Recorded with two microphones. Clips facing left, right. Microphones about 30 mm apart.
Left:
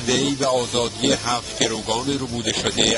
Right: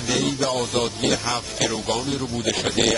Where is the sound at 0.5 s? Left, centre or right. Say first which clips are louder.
Left 2 dB; left.